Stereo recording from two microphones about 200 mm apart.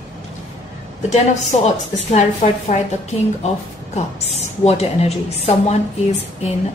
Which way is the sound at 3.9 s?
30° left (ahead or behind).